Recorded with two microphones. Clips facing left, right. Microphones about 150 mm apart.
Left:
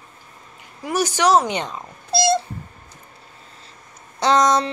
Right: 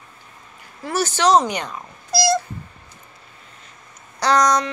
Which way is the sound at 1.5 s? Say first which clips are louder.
Left 2 dB; 25° left (ahead or behind).